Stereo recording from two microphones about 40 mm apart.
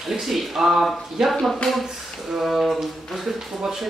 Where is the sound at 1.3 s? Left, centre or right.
Centre.